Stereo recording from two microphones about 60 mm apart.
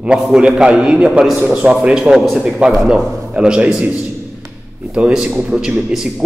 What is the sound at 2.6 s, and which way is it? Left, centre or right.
A man's voice, right.